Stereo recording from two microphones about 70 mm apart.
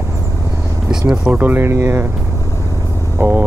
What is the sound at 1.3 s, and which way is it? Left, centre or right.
Speech, right.